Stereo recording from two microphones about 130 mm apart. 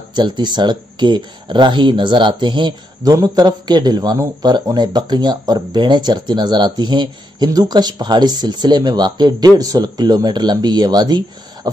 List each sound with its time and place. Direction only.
0.1 s speech: 35° right (ahead or behind)